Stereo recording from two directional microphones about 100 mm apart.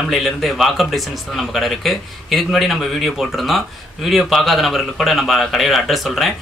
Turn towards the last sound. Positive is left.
turn(degrees=0)  # may be behind; listen again after turning